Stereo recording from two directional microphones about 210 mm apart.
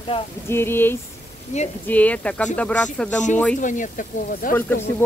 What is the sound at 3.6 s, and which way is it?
Speech, 35° left (ahead or behind).